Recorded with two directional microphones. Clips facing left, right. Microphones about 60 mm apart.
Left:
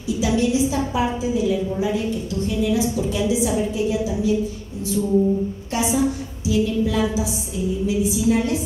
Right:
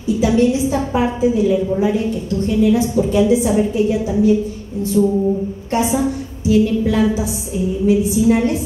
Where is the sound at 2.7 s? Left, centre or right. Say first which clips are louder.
Right 6 dB; right.